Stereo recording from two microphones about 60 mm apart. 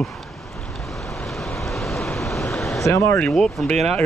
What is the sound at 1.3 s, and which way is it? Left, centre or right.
Waves, centre.